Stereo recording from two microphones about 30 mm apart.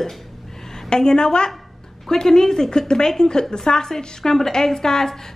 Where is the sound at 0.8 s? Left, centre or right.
Left.